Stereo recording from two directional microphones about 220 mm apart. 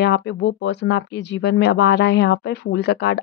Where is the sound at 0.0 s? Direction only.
50° left (ahead or behind).